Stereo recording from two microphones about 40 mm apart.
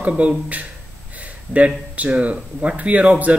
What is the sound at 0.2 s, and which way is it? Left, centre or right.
Speech, right.